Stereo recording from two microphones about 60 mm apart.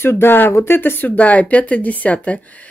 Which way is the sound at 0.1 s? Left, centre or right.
Left.